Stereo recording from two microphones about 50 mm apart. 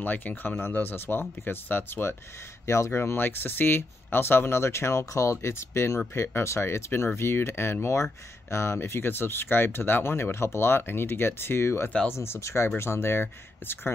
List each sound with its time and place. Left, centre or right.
0.0 s speech: left
2.6 s speech: left
3.0 s speech: left
8.0 s speech: left